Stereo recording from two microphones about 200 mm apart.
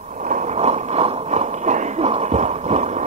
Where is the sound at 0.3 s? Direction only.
35° right (ahead or behind).